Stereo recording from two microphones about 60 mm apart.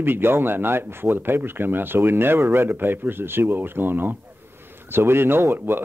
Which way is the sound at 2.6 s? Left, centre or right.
Right.